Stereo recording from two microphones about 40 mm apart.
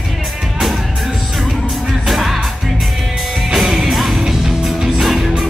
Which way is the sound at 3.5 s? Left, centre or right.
Centre.